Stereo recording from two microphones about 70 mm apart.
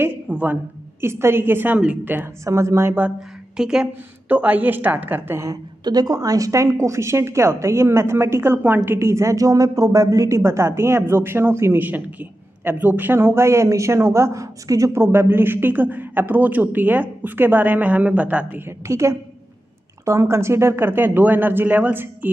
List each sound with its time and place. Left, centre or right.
0.3 s a man's voice: right
1.0 s a woman's voice: right
1.8 s a man's voice: centre
2.4 s speech: right
3.2 s a woman's voice: centre
4.3 s a man's voice: right
5.9 s a woman's voice: right
15.0 s a man's voice: right
18.7 s a woman's voice: right